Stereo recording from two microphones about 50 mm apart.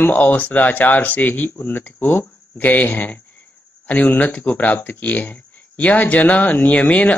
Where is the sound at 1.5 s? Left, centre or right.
Left.